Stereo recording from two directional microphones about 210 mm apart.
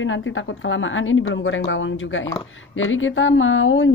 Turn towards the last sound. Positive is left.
turn(degrees=65)  # may be behind; listen again after turning